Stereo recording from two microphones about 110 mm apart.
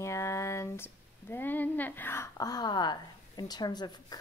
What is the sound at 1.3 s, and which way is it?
A woman's voice, 15° left (ahead or behind).